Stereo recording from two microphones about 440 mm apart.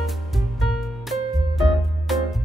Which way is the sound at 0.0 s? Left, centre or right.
Centre.